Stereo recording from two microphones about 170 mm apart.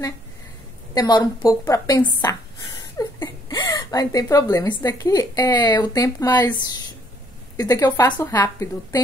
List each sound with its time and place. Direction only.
0.9 s speech: 25° left (ahead or behind)
7.5 s a woman's voice: 20° left (ahead or behind)